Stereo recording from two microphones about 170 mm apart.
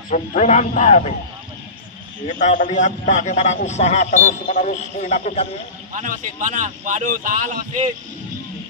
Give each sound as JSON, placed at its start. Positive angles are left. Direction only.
{"t": 0.1, "sound": "a man's voice", "side_deg": 45}
{"t": 2.2, "sound": "a man's voice", "side_deg": 50}
{"t": 5.9, "sound": "speech", "side_deg": -45}